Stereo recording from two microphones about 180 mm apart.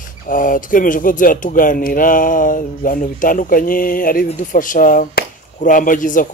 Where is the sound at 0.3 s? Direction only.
50° left (ahead or behind).